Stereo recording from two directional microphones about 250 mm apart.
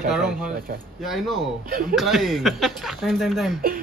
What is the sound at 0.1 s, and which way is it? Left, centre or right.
A man's voice, centre.